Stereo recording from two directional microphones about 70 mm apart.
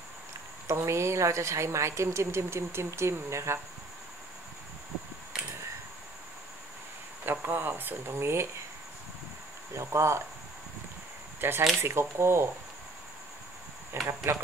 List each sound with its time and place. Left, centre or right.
0.7 s a woman's voice: right
7.2 s speech: right
9.8 s a woman's voice: right
11.4 s speech: right
14.0 s speech: right